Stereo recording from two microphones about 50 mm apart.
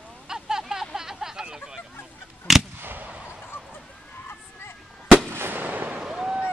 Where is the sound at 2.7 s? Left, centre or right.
Right.